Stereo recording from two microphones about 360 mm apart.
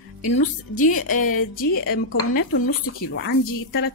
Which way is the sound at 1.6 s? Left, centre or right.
Left.